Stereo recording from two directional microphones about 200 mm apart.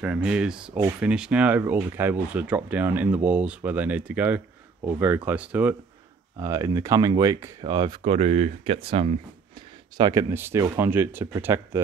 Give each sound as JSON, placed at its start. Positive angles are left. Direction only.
{"t": 0.0, "sound": "speech", "side_deg": -5}
{"t": 9.9, "sound": "speech", "side_deg": -20}